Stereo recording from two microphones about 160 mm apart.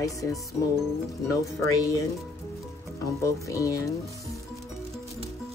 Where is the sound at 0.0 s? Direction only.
20° left (ahead or behind).